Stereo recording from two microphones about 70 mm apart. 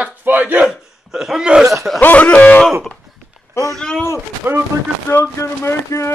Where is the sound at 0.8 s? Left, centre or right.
Centre.